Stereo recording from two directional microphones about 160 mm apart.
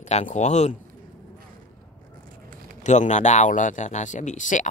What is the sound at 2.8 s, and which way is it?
Speech, 45° left (ahead or behind).